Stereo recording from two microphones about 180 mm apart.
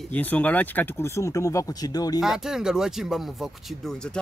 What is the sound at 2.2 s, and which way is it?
Speech, centre (ahead or behind).